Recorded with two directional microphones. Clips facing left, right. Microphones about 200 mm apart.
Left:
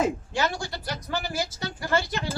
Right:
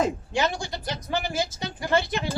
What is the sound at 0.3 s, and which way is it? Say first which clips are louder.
Speech: right 2 dB; 20° right (ahead or behind).